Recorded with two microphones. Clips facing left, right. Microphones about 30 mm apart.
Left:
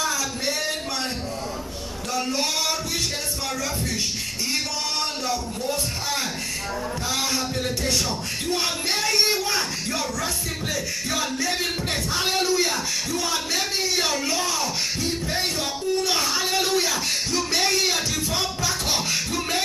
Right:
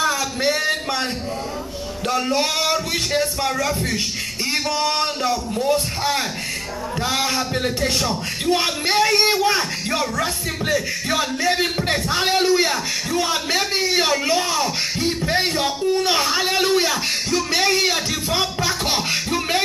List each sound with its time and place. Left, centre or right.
0.0 s a sound: right
2.0 s a man's voice: right
17.3 s music: centre
17.6 s speech: centre
18.3 s music: right